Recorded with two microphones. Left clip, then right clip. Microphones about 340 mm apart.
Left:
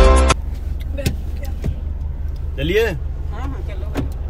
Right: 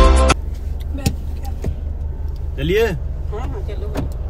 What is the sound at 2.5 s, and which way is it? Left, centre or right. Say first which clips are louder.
Vehicle: even; centre.